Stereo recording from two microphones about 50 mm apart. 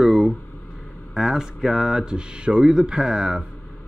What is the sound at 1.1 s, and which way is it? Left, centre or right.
Speech, centre.